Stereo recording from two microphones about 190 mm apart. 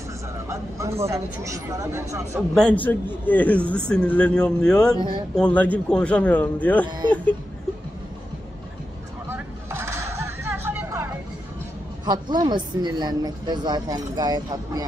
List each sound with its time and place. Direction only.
0.5 s a sound: 15° right (ahead or behind)
1.0 s speech: 15° right (ahead or behind)
2.5 s a man's voice: 5° left (ahead or behind)
6.9 s a woman's voice: 25° right (ahead or behind)
9.3 s vehicle: 15° right (ahead or behind)
12.1 s a woman's voice: 20° right (ahead or behind)